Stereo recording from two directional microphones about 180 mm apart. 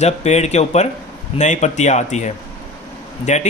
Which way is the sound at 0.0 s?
40° left (ahead or behind).